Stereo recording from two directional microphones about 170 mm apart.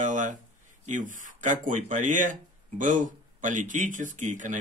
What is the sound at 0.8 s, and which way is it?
Speech, 50° right (ahead or behind).